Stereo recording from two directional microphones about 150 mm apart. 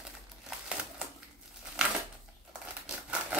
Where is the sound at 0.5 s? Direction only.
5° right (ahead or behind).